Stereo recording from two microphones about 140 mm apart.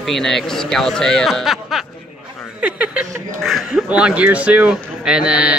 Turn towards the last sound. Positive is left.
turn(degrees=-5)  # may be behind; listen again after turning